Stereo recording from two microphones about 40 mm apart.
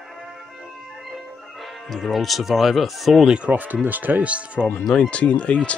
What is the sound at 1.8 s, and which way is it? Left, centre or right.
Speech, centre.